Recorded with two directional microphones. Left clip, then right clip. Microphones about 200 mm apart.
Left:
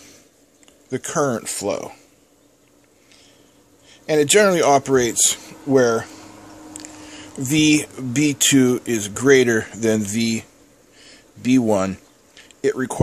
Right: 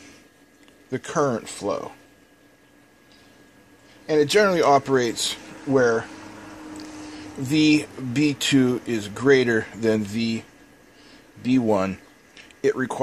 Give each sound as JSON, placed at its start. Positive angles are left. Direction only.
{"t": 0.8, "sound": "speech", "side_deg": 15}
{"t": 1.4, "sound": "speech", "side_deg": 30}
{"t": 4.0, "sound": "speech", "side_deg": 35}
{"t": 5.7, "sound": "speech", "side_deg": 35}
{"t": 7.4, "sound": "speech", "side_deg": 20}
{"t": 11.4, "sound": "speech", "side_deg": 25}